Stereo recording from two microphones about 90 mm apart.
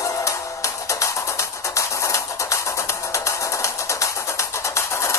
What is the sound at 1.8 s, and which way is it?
Music, 35° left (ahead or behind).